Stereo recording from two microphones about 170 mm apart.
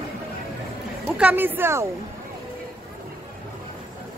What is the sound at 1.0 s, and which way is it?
Speech, 5° right (ahead or behind).